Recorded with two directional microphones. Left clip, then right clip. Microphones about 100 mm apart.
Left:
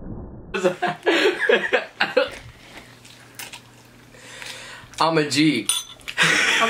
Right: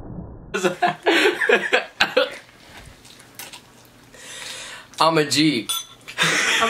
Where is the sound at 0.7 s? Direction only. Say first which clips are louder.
Right 1 dB; 60° right (ahead or behind).